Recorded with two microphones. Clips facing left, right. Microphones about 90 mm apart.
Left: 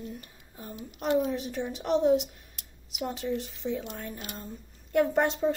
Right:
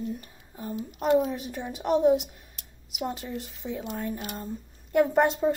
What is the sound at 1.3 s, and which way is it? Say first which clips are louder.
A woman's voice: left 2 dB; 5° right (ahead or behind).